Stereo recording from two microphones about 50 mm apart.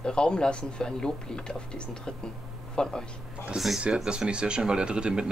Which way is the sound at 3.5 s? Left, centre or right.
Centre.